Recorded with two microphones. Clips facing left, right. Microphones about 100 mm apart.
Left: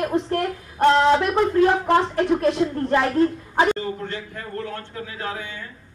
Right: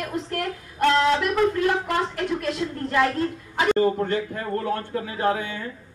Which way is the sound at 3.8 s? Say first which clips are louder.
Right 8 dB; 40° right (ahead or behind).